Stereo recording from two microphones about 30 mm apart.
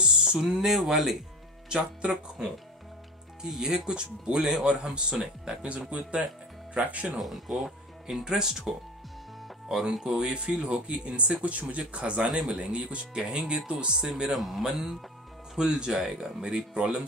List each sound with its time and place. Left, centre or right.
0.0 s music: right
0.5 s speech: centre
1.7 s speech: right
3.4 s speech: centre
3.7 s speech: right
5.7 s speech: right
7.2 s speech: centre
8.2 s speech: right
10.1 s speech: right
12.4 s speech: right
13.9 s speech: right
14.3 s speech: centre
14.7 s speech: centre